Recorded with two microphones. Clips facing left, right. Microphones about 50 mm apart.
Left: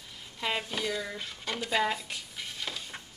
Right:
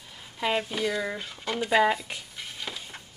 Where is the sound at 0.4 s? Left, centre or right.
Centre.